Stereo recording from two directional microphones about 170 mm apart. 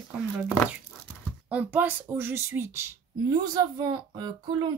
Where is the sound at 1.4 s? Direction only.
10° right (ahead or behind); by 4.7 s 25° right (ahead or behind).